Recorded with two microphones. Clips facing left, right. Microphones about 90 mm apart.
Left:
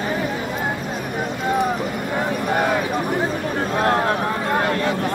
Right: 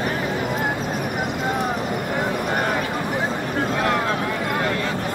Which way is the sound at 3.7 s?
30° left (ahead or behind).